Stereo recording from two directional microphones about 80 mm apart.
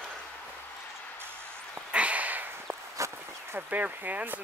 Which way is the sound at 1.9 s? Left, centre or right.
Centre.